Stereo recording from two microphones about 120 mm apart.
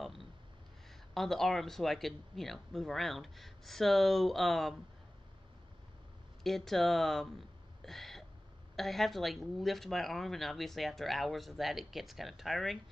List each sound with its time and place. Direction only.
0.0 s a sound: centre (ahead or behind)
1.1 s speech: centre (ahead or behind)
6.4 s speech: centre (ahead or behind)